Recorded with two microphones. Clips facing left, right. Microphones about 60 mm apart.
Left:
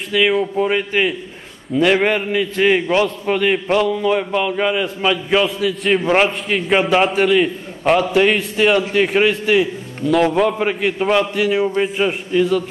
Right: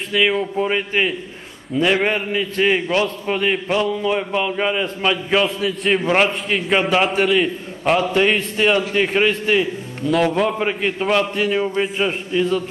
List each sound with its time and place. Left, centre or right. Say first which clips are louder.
0.1 s a man's voice: left 2 dB; centre
2.9 s a man's voice: left 3 dB; left
3.9 s a man's voice: left 3 dB; centre